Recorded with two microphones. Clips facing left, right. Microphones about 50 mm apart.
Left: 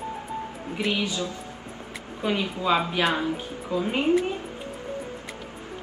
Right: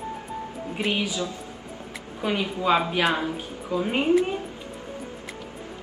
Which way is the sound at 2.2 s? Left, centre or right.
Centre.